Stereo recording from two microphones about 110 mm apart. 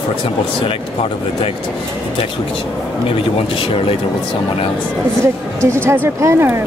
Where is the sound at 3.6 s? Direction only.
55° left (ahead or behind).